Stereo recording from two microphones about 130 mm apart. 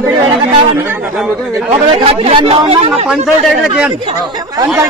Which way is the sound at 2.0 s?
45° right (ahead or behind).